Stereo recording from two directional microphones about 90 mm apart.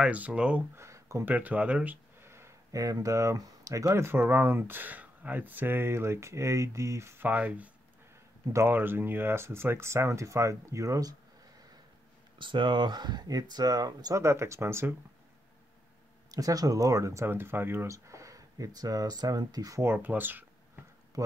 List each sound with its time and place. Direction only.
0.0 s speech: 15° right (ahead or behind)
0.7 s a sound: 35° right (ahead or behind)
1.2 s speech: 20° right (ahead or behind)
2.1 s speech: 30° right (ahead or behind)
7.2 s speech: 15° right (ahead or behind); by 11.1 s 40° right (ahead or behind)
12.4 s speech: 65° right (ahead or behind); by 14.2 s 45° right (ahead or behind)
14.2 s speech: 30° right (ahead or behind)
16.3 s speech: 40° right (ahead or behind)
19.8 s speech: 25° right (ahead or behind)